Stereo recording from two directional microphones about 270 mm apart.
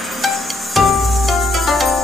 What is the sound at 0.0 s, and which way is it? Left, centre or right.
Music, centre.